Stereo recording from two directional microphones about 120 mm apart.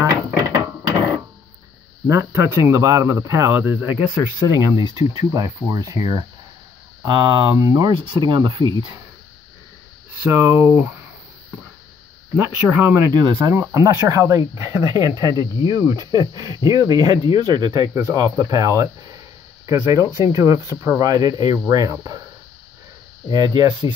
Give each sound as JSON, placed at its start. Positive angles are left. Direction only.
{"t": 0.0, "sound": "a sound", "side_deg": -25}
{"t": 2.0, "sound": "speech", "side_deg": -25}
{"t": 7.5, "sound": "speech", "side_deg": -30}
{"t": 7.9, "sound": "speech", "side_deg": -45}
{"t": 10.3, "sound": "speech", "side_deg": -25}
{"t": 12.4, "sound": "speech", "side_deg": -15}
{"t": 13.1, "sound": "speech", "side_deg": -35}
{"t": 13.4, "sound": "speech", "side_deg": -25}
{"t": 23.3, "sound": "speech", "side_deg": -35}